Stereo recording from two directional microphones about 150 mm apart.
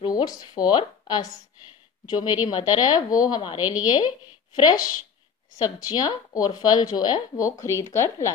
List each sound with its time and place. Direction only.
0.0 s speech: 25° left (ahead or behind)
2.4 s speech: 25° left (ahead or behind)